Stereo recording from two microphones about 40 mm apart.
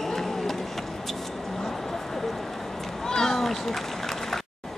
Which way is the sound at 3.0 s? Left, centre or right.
Centre.